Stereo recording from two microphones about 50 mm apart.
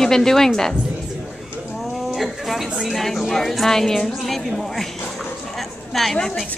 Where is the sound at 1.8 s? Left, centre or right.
Centre.